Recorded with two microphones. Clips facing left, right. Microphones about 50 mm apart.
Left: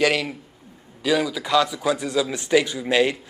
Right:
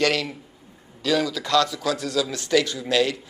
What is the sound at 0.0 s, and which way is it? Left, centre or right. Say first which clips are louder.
A man's voice: left 2 dB; centre.